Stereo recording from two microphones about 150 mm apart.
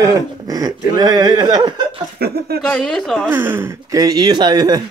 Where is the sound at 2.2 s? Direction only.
90° right.